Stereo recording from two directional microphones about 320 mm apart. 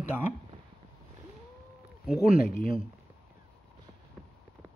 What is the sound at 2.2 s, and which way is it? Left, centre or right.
Speech, left.